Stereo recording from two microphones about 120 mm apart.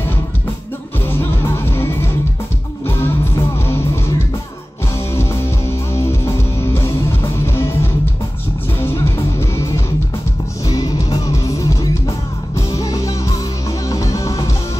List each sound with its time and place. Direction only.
1.0 s music: 20° left (ahead or behind)
10.6 s music: 35° left (ahead or behind)